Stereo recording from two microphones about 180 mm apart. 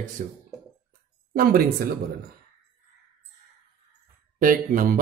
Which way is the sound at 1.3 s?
55° right (ahead or behind).